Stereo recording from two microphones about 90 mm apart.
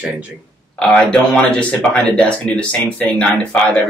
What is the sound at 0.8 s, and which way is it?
Speech, 15° left (ahead or behind).